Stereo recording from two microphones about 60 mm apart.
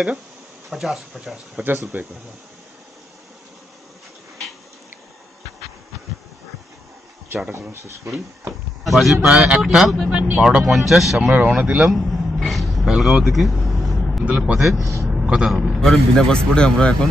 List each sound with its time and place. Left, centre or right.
0.7 s speech: centre
1.9 s speech: right
7.7 s speech: right
8.8 s speech: centre
10.0 s speech: right
10.6 s speech: centre
11.3 s speech: centre
11.9 s a man's voice: centre
12.4 s vehicle: centre
14.3 s a man's voice: centre
15.8 s a man's voice: centre